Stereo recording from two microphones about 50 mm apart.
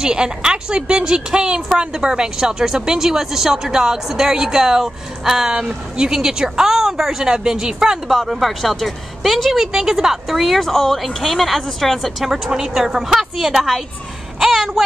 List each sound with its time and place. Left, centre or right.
0.0 s a woman's voice: centre
8.1 s a woman's voice: centre
12.3 s a woman's voice: centre
14.4 s a sound: centre